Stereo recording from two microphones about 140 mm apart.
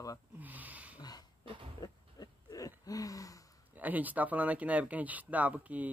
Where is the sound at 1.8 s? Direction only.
25° left (ahead or behind).